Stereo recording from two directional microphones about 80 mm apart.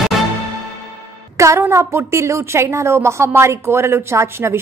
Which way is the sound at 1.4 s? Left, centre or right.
Right.